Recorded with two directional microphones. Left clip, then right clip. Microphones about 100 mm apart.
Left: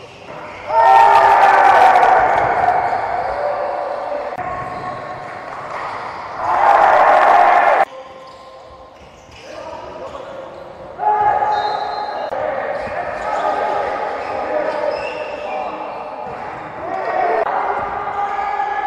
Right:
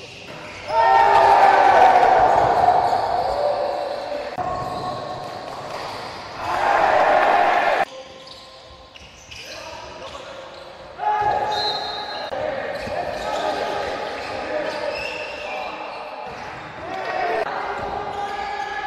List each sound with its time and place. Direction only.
0.7 s train: 20° right (ahead or behind)
1.2 s basketball bounce: 10° right (ahead or behind)
4.4 s basketball bounce: centre (ahead or behind); by 7.9 s 20° right (ahead or behind)
11.0 s basketball bounce: 25° right (ahead or behind)
17.8 s basketball bounce: 15° right (ahead or behind)